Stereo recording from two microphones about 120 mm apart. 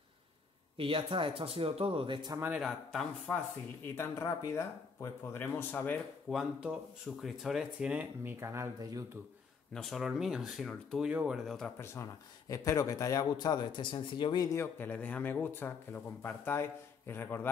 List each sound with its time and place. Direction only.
0.7 s speech: 50° right (ahead or behind)
2.3 s speech: 20° right (ahead or behind)
2.6 s speech: 5° left (ahead or behind)
3.9 s a man's voice: 25° left (ahead or behind)
6.3 s speech: 5° right (ahead or behind); by 9.0 s 25° right (ahead or behind)
9.8 s speech: centre (ahead or behind)
11.8 s a man's voice: 25° left (ahead or behind)